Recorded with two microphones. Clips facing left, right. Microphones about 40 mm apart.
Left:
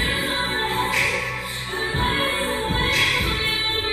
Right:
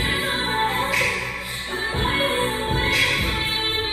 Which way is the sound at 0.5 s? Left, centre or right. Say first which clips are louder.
Right 1 dB; right.